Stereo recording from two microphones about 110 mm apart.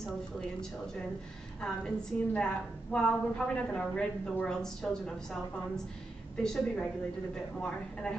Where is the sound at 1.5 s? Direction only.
10° left (ahead or behind).